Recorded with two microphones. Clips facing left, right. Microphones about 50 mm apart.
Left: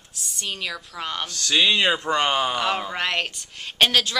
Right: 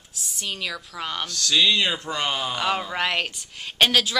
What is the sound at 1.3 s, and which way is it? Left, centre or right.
Speech, left.